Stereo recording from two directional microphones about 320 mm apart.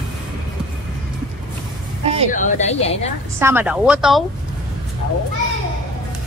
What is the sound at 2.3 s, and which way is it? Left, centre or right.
Speech, left.